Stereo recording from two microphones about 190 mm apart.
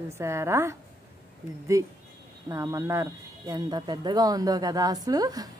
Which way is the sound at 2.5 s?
15° right (ahead or behind).